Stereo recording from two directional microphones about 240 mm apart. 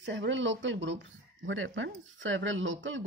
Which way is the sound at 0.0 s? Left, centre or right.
Right.